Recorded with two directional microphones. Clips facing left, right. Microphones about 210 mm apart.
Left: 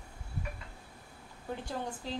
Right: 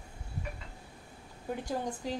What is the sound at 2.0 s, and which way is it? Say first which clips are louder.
Speech: right 2 dB; 15° right (ahead or behind).